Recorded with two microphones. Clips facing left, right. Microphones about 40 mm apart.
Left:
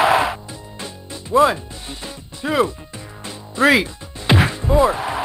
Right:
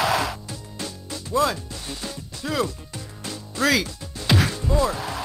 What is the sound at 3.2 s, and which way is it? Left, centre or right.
Music, left.